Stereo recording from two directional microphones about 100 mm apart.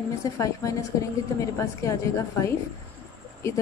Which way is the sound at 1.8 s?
30° left (ahead or behind).